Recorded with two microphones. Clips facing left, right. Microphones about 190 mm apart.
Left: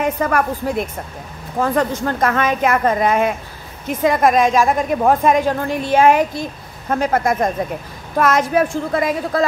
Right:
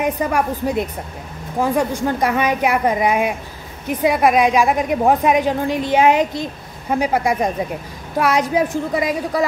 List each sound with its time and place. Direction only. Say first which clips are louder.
0.0 s a woman's voice: left 1 dB; 15° right (ahead or behind)